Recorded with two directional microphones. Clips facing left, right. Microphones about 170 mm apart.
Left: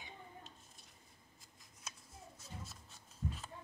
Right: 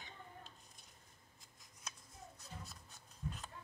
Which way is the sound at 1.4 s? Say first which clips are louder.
Even; centre (ahead or behind).